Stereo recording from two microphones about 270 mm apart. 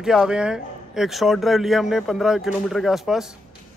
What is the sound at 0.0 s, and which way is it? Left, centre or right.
Speech, centre.